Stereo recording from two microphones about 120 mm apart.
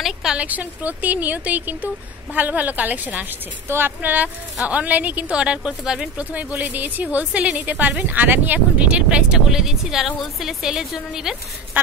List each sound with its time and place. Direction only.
0.0 s speech: 5° right (ahead or behind)